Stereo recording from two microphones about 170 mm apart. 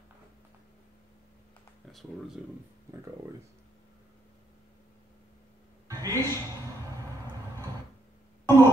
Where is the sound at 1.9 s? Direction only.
Centre (ahead or behind).